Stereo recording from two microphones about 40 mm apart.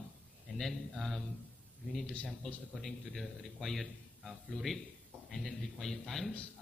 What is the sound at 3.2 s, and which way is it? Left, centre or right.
A man's voice, centre.